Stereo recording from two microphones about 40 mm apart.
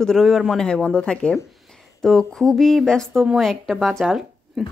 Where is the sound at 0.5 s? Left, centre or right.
Left.